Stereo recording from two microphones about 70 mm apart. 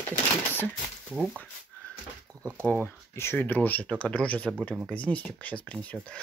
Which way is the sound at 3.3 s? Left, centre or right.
Left.